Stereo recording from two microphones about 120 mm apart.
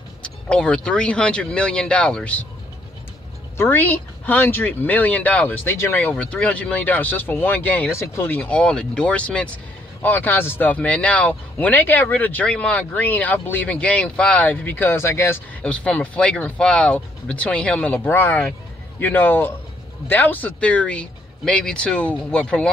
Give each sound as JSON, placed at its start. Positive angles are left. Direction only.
{"t": 0.2, "sound": "speech", "side_deg": 10}
{"t": 3.5, "sound": "speech", "side_deg": 15}
{"t": 15.6, "sound": "speech", "side_deg": 10}